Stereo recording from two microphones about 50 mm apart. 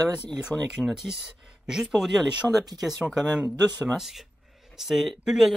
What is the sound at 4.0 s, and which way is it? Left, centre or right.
Speech, centre.